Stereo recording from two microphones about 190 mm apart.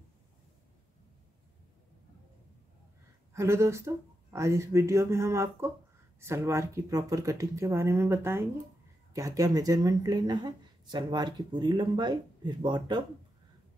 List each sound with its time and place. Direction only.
3.3 s a woman's voice: 15° right (ahead or behind)